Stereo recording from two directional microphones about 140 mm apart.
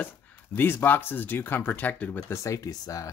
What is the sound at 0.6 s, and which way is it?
Speech, 15° left (ahead or behind).